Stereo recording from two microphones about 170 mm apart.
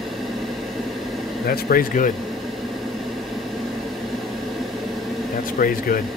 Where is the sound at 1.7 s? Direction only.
55° left (ahead or behind).